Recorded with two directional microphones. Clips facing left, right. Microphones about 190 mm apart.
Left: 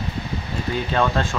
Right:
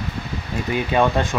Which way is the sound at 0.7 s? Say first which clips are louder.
Right 3 dB; 15° right (ahead or behind).